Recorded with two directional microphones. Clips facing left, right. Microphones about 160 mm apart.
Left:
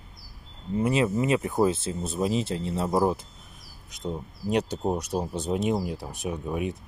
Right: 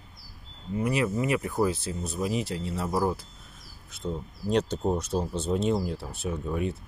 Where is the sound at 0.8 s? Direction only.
25° left (ahead or behind).